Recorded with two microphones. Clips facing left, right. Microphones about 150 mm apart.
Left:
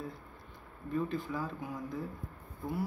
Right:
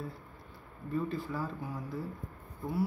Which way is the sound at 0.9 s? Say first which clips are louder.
Even; 5° right (ahead or behind).